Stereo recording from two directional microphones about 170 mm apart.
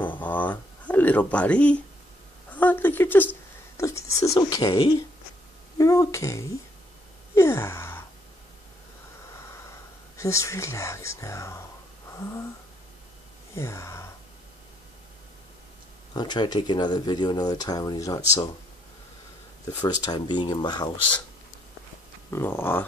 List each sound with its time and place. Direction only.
0.2 s a sound: 10° left (ahead or behind)
2.5 s speech: 10° left (ahead or behind)
5.8 s speech: 20° left (ahead or behind)
7.3 s gasp: 15° left (ahead or behind)
10.1 s speech: 15° left (ahead or behind)
13.6 s speech: 15° left (ahead or behind)
16.1 s speech: 25° left (ahead or behind)
19.6 s speech: 15° left (ahead or behind)
20.1 s speech: 25° left (ahead or behind)
22.3 s speech: 15° left (ahead or behind)